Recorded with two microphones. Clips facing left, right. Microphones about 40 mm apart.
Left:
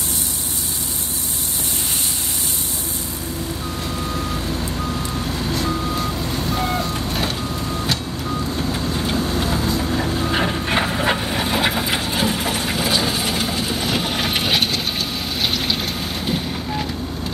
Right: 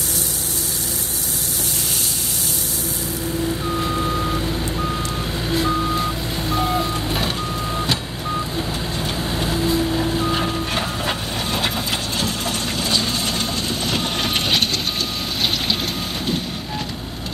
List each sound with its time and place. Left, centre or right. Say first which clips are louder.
5.5 s vehicle: right 4 dB; centre
9.0 s vehicle: left 2 dB; centre
10.3 s wood: left 2 dB; centre
16.3 s wind noise: left 1 dB; centre